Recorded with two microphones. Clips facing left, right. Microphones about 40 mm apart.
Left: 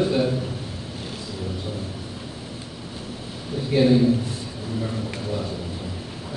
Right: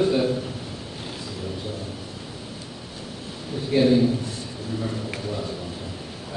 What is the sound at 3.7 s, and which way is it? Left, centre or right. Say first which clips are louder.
A man's voice: left 1 dB; centre.